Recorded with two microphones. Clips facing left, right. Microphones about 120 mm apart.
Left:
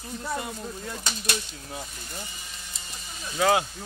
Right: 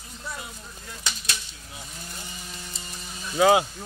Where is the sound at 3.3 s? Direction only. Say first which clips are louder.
Right 4 dB; 10° right (ahead or behind).